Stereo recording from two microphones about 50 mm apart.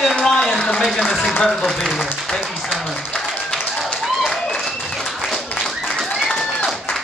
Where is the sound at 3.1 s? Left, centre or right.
Centre.